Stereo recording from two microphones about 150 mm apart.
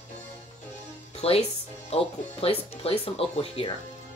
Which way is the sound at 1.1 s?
40° left (ahead or behind).